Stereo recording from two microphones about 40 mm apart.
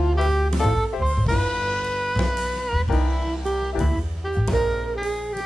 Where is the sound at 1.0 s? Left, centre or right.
Centre.